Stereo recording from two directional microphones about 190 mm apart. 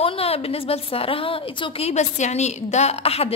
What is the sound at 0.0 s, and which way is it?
A woman's voice, 30° left (ahead or behind).